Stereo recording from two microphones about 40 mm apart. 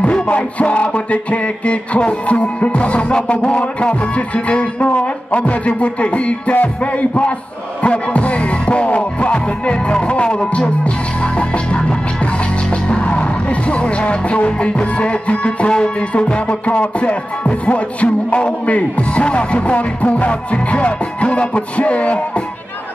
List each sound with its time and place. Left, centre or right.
0.0 s music: left
12.8 s music: left